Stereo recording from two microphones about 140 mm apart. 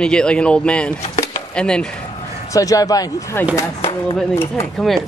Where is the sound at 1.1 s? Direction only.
25° left (ahead or behind).